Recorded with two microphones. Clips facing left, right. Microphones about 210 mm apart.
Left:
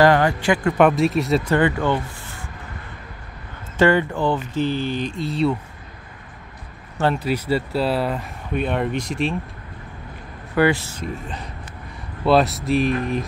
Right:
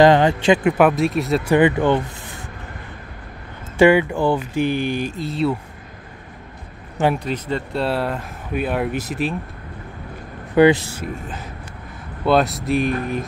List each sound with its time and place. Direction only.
0.0 s speech: 20° right (ahead or behind)
0.7 s speech: centre (ahead or behind)
1.4 s speech: 15° right (ahead or behind)
3.7 s speech: 10° right (ahead or behind)
7.2 s speech: 10° left (ahead or behind)
10.5 s speech: 20° right (ahead or behind)
11.0 s speech: centre (ahead or behind)